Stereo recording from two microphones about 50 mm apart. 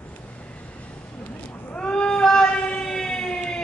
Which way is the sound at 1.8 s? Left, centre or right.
Centre.